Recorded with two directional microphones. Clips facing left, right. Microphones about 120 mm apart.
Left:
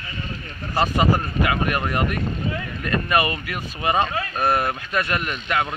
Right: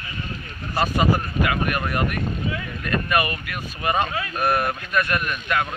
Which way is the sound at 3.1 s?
25° left (ahead or behind).